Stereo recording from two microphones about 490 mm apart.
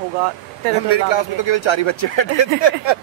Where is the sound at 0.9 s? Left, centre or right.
Left.